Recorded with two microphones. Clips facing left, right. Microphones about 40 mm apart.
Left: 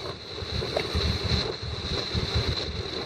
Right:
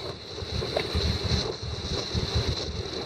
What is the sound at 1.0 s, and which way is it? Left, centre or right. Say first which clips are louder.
Boat: left 1 dB; centre.